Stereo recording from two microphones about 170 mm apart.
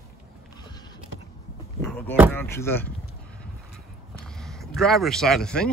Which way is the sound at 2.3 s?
15° left (ahead or behind).